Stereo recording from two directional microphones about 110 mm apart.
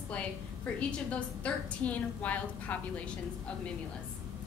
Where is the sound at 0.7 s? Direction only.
10° left (ahead or behind).